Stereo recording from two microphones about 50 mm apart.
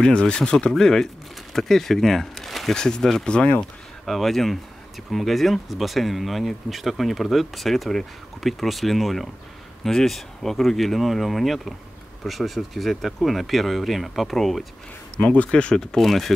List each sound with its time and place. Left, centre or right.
0.0 s speech: centre
3.3 s speech: centre
4.0 s speech: centre
15.1 s speech: left
15.8 s speech: centre